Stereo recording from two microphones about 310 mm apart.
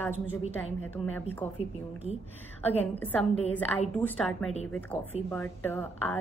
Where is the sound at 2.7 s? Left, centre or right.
Centre.